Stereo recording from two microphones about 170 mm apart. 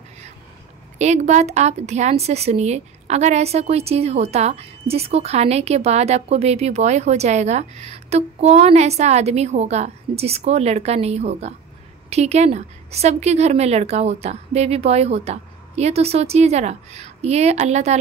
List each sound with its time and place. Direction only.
0.9 s a woman's voice: 40° right (ahead or behind)